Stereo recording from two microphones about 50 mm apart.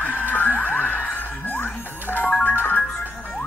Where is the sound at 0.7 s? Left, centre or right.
Left.